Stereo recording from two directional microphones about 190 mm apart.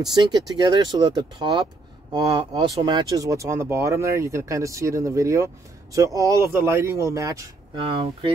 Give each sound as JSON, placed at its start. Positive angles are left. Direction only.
{"t": 0.0, "sound": "speech", "side_deg": -20}
{"t": 7.8, "sound": "speech", "side_deg": -30}